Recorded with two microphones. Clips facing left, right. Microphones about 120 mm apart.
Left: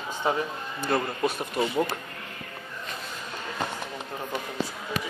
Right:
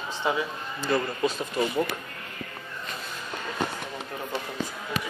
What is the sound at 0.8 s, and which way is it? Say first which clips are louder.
Speech: even; 55° left (ahead or behind).